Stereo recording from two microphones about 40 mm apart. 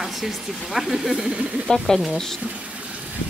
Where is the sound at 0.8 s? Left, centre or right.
Centre.